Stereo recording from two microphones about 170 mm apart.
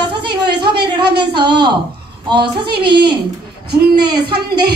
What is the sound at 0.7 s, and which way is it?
Speech, 70° right (ahead or behind).